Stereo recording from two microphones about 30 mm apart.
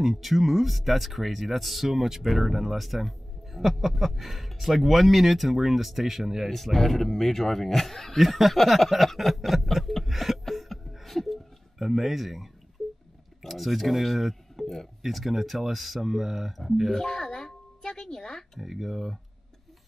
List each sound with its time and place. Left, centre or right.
0.0 s a man's voice: centre
6.5 s a man's voice: centre
10.0 s a sound: centre
11.1 s a sound: centre
11.8 s a man's voice: centre
16.9 s speech: left
18.6 s a man's voice: centre